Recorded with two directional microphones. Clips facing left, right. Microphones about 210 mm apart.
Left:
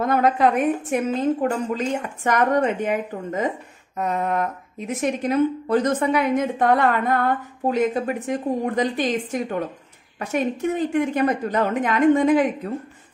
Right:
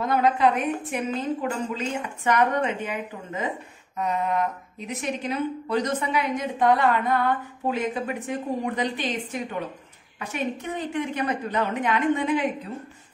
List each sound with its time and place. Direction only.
0.0 s a woman's voice: 50° left (ahead or behind)